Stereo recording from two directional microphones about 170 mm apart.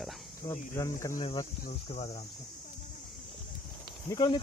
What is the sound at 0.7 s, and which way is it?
Speech, 20° left (ahead or behind).